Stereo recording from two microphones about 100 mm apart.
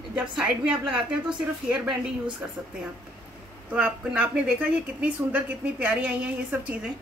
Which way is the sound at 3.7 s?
15° right (ahead or behind).